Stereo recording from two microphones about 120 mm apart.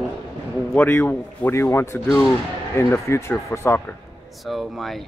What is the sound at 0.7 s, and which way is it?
Speech, 15° left (ahead or behind).